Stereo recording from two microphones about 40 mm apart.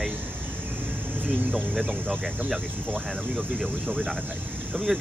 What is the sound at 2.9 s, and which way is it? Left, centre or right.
Speech, centre.